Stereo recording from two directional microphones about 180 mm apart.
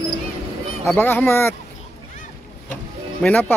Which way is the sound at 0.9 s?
10° left (ahead or behind).